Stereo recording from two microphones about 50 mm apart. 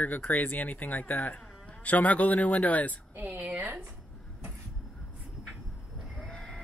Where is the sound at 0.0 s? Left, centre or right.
Left.